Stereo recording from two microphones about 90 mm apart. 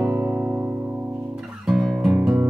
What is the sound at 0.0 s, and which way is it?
Music, 30° right (ahead or behind).